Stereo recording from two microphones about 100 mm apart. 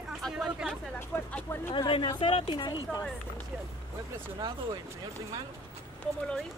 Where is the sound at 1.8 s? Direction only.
55° left (ahead or behind).